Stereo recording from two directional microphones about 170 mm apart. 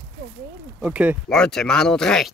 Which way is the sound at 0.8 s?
10° right (ahead or behind).